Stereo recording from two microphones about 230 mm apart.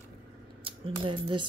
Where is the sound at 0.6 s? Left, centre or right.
Right.